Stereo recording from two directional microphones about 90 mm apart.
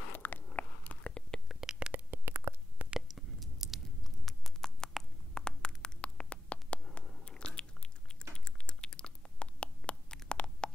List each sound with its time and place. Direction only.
0.1 s whispering: 20° left (ahead or behind)
1.5 s shuffling cards: 5° right (ahead or behind)
2.0 s stomach rumble: 25° right (ahead or behind)
2.9 s a sound: 5° right (ahead or behind); by 6.8 s 15° left (ahead or behind)
6.8 s biting: 5° left (ahead or behind)
8.5 s a sound: 10° left (ahead or behind)